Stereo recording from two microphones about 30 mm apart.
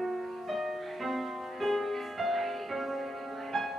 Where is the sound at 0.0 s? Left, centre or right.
Centre.